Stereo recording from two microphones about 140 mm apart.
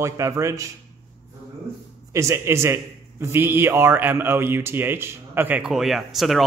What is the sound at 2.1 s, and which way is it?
A man's voice, 20° right (ahead or behind).